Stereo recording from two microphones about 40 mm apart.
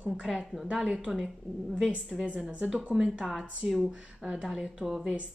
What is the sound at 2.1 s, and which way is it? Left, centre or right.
A woman's voice, centre.